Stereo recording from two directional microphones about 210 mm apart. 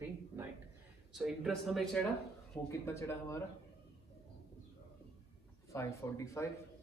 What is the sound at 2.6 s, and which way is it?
Speech, 15° left (ahead or behind).